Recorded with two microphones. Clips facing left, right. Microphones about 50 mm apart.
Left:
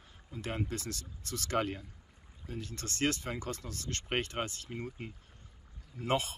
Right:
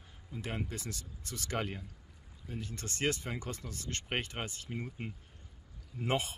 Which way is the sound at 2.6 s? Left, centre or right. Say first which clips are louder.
Left 2 dB; centre.